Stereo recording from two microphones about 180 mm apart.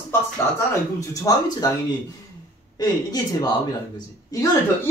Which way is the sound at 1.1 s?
20° left (ahead or behind).